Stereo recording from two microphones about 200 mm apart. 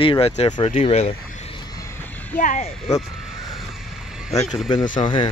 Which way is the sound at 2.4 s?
40° left (ahead or behind).